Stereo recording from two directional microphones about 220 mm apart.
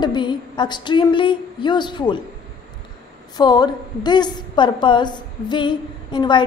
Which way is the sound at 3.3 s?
20° left (ahead or behind).